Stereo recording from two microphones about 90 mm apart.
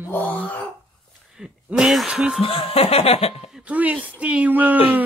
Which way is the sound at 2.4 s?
90° left.